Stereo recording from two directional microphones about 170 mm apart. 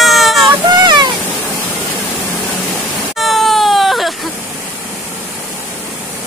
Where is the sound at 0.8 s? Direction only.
25° right (ahead or behind).